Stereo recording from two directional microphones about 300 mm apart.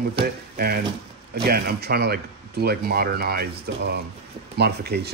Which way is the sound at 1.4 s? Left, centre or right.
Right.